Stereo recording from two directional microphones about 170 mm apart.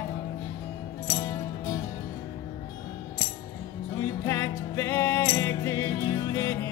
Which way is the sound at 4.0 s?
20° left (ahead or behind).